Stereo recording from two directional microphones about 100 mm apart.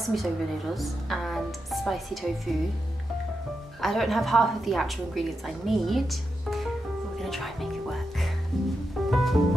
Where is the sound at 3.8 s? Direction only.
Centre (ahead or behind).